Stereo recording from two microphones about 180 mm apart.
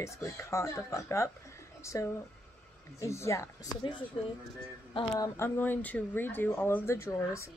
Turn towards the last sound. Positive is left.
turn(degrees=15)  # may be behind; listen again after turning